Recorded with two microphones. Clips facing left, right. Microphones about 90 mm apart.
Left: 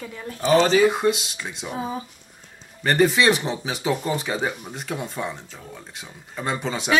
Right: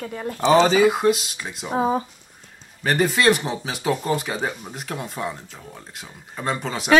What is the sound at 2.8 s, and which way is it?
Speech, centre (ahead or behind).